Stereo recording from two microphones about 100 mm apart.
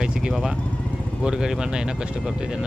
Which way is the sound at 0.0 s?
10° right (ahead or behind).